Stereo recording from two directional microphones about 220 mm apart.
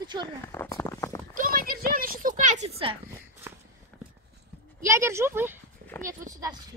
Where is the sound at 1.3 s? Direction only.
40° right (ahead or behind).